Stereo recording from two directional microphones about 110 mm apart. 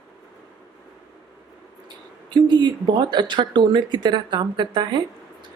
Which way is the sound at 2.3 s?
40° right (ahead or behind).